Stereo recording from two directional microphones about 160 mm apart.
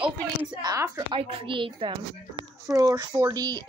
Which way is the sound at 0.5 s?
25° right (ahead or behind).